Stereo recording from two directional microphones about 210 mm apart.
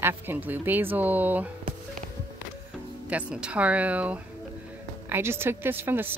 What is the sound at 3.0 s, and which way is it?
Speech, 5° right (ahead or behind).